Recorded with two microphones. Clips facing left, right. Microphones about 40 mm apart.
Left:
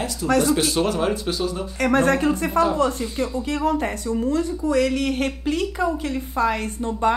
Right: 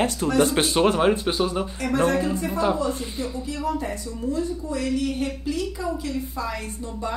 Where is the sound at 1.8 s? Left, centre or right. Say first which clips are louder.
Left 4 dB; left.